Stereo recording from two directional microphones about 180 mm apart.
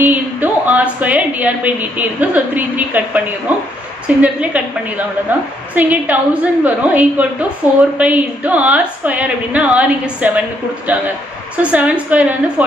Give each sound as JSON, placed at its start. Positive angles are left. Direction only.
{"t": 0.0, "sound": "a woman's voice", "side_deg": -10}
{"t": 11.7, "sound": "a woman's voice", "side_deg": -10}